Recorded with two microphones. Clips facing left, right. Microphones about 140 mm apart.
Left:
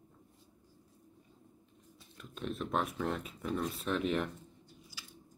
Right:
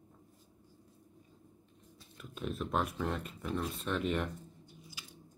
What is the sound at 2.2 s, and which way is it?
Speech, centre (ahead or behind).